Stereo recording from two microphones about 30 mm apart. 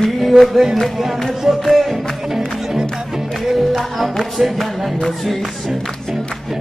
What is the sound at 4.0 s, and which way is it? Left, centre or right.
Music, centre.